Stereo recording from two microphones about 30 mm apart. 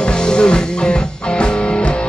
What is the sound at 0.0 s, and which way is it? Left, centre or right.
Music, left.